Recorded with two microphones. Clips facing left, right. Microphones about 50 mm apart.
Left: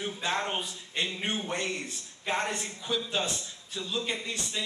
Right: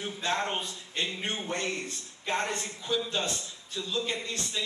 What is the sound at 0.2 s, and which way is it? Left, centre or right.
A man's voice, centre.